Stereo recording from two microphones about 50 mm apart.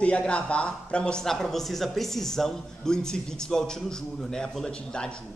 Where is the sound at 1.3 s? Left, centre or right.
Centre.